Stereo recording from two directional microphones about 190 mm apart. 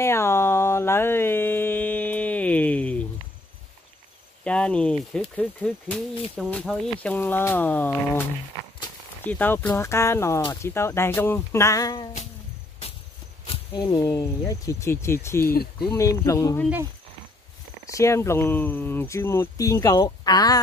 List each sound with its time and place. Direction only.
0.0 s a sound: 15° left (ahead or behind)
4.5 s speech: 5° left (ahead or behind)
9.2 s speech: 10° left (ahead or behind)
13.5 s speech: 20° left (ahead or behind)
15.4 s speech: 55° left (ahead or behind)
15.9 s speech: 15° left (ahead or behind)
17.8 s speech: 15° left (ahead or behind)